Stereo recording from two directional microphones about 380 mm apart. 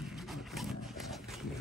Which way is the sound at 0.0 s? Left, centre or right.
Centre.